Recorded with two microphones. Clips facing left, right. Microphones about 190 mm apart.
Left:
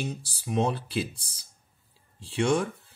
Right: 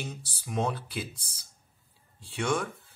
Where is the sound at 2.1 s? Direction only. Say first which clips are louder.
Left 5 dB; 25° left (ahead or behind).